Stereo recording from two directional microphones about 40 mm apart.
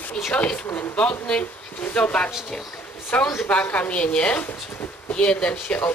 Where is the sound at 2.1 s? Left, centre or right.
Left.